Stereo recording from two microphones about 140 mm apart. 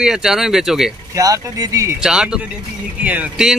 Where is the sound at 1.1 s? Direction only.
25° right (ahead or behind).